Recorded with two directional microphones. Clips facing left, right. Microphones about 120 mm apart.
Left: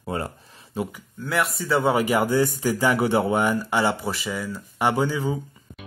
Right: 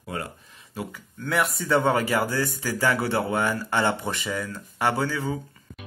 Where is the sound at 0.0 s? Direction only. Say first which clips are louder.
Left 4 dB; 30° left (ahead or behind).